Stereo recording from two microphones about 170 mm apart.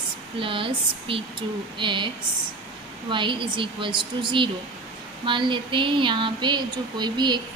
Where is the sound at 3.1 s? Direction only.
30° right (ahead or behind).